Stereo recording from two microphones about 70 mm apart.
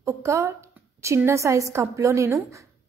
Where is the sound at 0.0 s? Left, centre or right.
Right.